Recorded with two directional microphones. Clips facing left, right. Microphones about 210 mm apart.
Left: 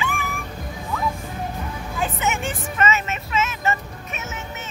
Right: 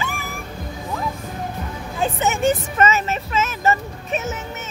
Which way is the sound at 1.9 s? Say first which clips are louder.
Right 3 dB; 35° right (ahead or behind).